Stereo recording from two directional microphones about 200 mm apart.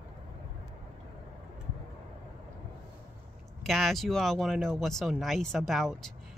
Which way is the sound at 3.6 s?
Centre (ahead or behind).